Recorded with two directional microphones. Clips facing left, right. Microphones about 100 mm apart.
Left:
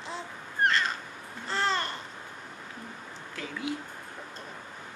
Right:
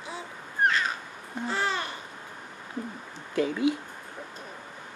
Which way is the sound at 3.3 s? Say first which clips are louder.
Right 11 dB; 25° right (ahead or behind).